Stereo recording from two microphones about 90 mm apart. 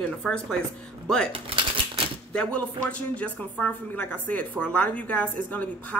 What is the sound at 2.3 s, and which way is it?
Speech, 15° left (ahead or behind).